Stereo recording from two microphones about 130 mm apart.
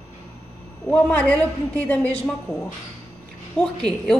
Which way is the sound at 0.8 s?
10° left (ahead or behind).